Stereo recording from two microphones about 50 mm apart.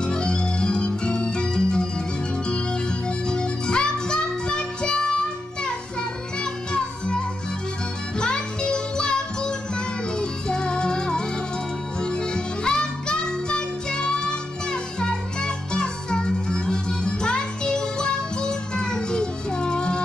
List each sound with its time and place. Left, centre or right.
0.0 s music: centre
6.4 s music: centre
8.2 s music: centre